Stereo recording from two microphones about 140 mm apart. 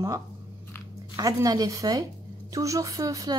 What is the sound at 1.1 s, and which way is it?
A woman's voice, 25° right (ahead or behind).